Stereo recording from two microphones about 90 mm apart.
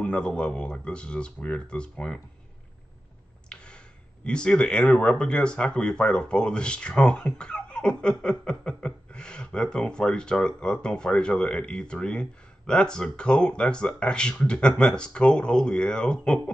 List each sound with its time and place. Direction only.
0.0 s speech: 10° left (ahead or behind)
3.5 s a sound: 10° left (ahead or behind)
4.2 s speech: 10° left (ahead or behind)